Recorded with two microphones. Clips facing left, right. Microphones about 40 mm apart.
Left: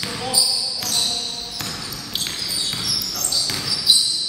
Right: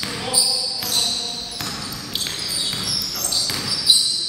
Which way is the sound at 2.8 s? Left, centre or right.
Centre.